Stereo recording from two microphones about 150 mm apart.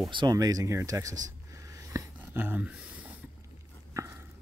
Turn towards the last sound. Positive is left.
turn(degrees=-20)  # may be behind; listen again after turning